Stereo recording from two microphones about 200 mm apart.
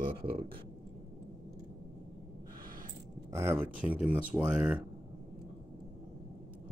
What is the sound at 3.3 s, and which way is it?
Speech, 10° right (ahead or behind).